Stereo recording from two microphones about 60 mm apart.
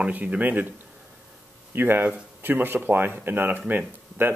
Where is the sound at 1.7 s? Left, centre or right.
Right.